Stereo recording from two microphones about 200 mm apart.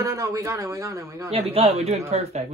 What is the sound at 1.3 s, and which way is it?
Speech, 30° right (ahead or behind).